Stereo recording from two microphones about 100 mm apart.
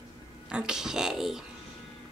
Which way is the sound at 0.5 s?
10° right (ahead or behind).